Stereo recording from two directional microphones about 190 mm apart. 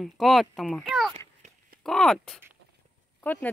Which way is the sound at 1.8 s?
Centre (ahead or behind).